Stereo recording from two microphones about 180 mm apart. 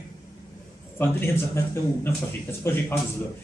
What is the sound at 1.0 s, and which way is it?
A man's voice, 15° left (ahead or behind).